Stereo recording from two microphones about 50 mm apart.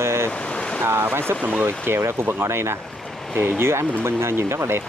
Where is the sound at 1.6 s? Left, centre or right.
Right.